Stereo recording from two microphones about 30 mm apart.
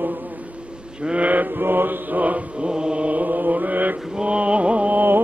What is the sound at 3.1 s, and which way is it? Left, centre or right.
Mantra, right.